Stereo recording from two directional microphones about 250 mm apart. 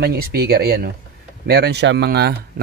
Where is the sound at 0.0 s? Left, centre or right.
Right.